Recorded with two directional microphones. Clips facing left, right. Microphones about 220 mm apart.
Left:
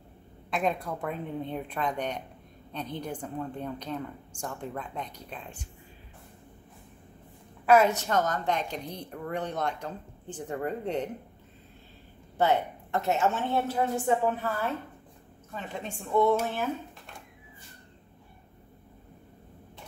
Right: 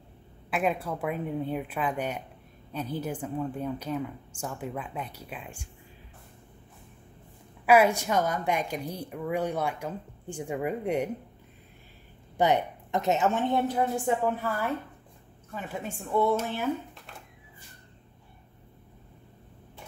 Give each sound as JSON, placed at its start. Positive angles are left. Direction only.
{"t": 0.5, "sound": "a woman's voice", "side_deg": -5}
{"t": 7.6, "sound": "a woman's voice", "side_deg": -10}
{"t": 12.4, "sound": "a woman's voice", "side_deg": -15}